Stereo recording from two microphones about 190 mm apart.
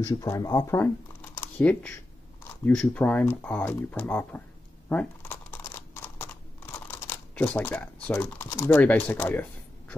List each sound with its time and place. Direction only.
0.0 s speech: 20° left (ahead or behind)
4.8 s a sound: 10° left (ahead or behind)
8.5 s speech: 10° left (ahead or behind)